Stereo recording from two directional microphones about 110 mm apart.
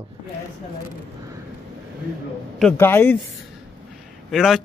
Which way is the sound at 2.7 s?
20° left (ahead or behind).